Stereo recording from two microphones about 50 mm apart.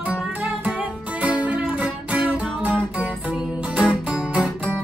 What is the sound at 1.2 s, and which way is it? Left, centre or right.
Music, right.